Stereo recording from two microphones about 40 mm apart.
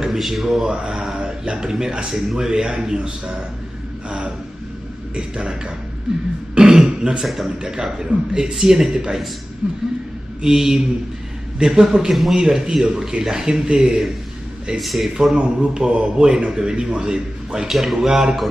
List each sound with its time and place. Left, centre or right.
0.0 s speech: centre
0.7 s speech: right
5.1 s speech: right
6.5 s throat clearing: centre
7.0 s a man's voice: centre
7.6 s a man's voice: centre
9.6 s speech: right
10.4 s a man's voice: centre
14.8 s speech: centre
15.3 s speech: right
17.6 s a man's voice: centre